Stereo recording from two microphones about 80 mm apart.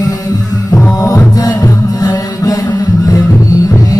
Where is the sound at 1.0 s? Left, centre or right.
Left.